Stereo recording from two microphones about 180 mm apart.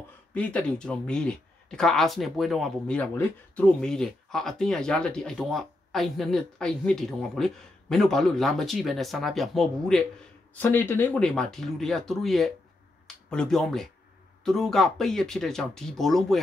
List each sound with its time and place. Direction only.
0.3 s speech: 5° left (ahead or behind)